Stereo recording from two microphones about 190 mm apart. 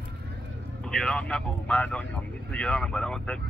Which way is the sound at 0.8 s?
5° left (ahead or behind).